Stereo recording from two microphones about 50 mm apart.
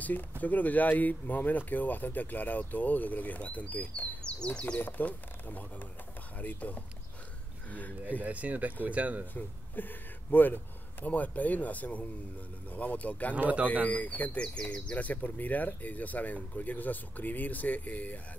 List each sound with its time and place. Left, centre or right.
0.4 s speech: left
4.7 s speech: left
8.2 s speech: right
9.3 s a man's voice: left
13.3 s speech: right
13.8 s speech: left